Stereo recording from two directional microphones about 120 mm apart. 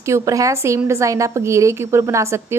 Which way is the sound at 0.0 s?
25° right (ahead or behind).